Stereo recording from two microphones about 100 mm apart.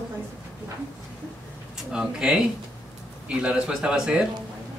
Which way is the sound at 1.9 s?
5° right (ahead or behind).